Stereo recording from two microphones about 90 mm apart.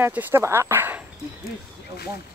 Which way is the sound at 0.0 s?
20° right (ahead or behind).